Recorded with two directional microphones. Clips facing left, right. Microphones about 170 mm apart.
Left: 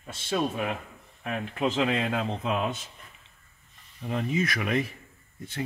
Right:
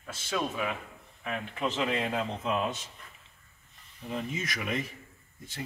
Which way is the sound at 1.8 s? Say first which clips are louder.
Left 3 dB; 65° left (ahead or behind).